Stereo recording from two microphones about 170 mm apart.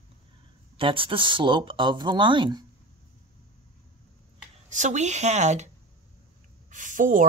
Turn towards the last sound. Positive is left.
turn(degrees=-50)  # may be behind; listen again after turning